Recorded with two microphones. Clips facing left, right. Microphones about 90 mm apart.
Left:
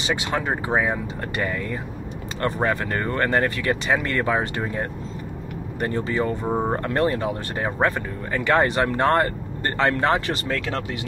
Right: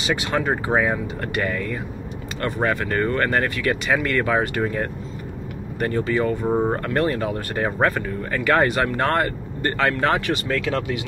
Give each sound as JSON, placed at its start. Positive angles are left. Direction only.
{"t": 0.0, "sound": "speech", "side_deg": 20}
{"t": 6.4, "sound": "speech", "side_deg": 0}
{"t": 6.8, "sound": "speech", "side_deg": 25}